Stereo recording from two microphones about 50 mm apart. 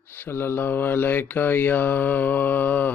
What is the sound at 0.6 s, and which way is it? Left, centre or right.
Mantra, left.